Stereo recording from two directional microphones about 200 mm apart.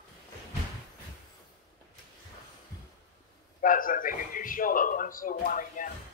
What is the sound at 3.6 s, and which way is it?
Speech, 45° left (ahead or behind).